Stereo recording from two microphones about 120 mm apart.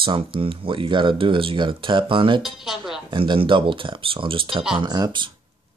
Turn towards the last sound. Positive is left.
turn(degrees=-35)  # may be behind; listen again after turning